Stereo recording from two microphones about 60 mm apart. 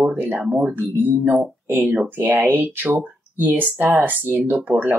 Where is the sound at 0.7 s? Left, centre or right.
Right.